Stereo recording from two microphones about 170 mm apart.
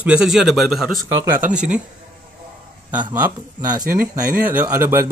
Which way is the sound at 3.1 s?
10° right (ahead or behind).